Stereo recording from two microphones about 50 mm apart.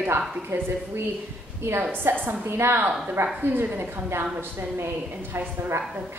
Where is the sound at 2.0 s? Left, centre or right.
Right.